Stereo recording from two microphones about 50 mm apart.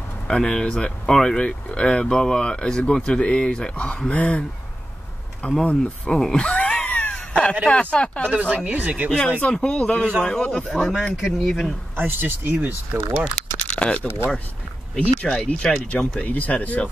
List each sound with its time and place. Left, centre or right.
0.3 s speech: centre
5.7 s speech: left
6.3 s cat: left
7.6 s speech: left
8.3 s speech: right
9.4 s speech: left
10.7 s speech: centre
12.0 s speech: right
13.7 s a sound: left
14.0 s speech: left
15.4 s speech: left